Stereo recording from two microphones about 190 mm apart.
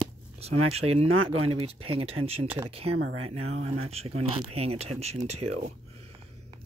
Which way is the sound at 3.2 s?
30° right (ahead or behind).